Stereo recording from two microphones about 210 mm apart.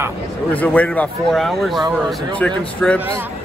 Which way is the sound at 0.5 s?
5° left (ahead or behind).